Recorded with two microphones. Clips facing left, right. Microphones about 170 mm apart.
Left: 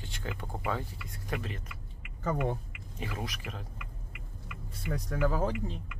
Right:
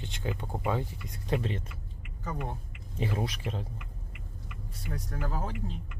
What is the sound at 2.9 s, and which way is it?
Speech, 30° right (ahead or behind).